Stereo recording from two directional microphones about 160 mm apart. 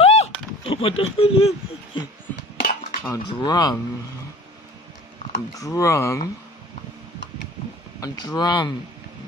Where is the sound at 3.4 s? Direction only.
25° left (ahead or behind).